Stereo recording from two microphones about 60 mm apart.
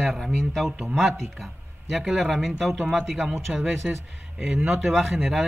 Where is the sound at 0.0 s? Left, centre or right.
Centre.